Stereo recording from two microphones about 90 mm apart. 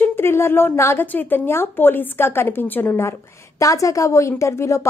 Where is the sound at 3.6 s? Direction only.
40° left (ahead or behind).